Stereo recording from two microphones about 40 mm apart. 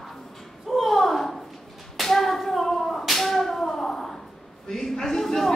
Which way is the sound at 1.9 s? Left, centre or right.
Centre.